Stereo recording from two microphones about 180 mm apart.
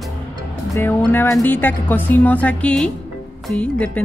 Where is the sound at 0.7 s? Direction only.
10° left (ahead or behind).